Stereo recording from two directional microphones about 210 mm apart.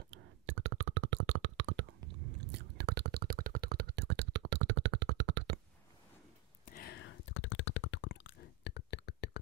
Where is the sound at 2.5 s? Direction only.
55° right (ahead or behind).